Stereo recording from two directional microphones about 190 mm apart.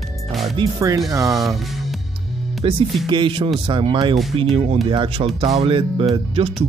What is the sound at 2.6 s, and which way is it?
Speech, 30° right (ahead or behind).